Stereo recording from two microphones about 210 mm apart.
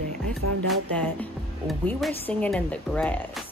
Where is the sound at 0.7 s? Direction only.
5° left (ahead or behind).